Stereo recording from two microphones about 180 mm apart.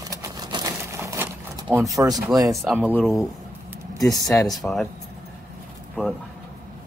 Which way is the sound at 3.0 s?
Centre (ahead or behind).